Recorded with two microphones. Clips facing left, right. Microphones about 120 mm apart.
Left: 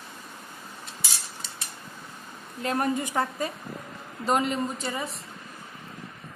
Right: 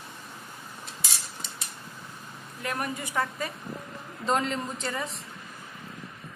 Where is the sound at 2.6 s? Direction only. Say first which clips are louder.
Left 6 dB; 30° left (ahead or behind).